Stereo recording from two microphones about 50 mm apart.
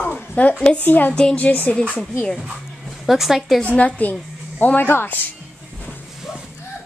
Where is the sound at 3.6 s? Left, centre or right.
Left.